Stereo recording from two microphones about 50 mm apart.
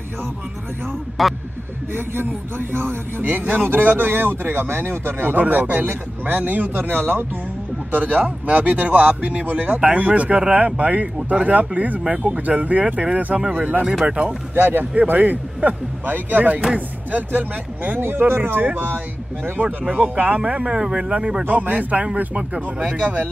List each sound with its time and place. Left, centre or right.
1.2 s speech: centre
2.7 s speech: right
7.9 s speech: right
12.0 s speech: centre
14.5 s speech: right
18.0 s speech: right
20.0 s speech: right
21.5 s speech: right